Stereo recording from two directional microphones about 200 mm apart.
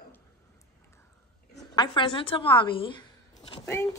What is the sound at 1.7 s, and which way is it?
A woman's voice, 25° left (ahead or behind).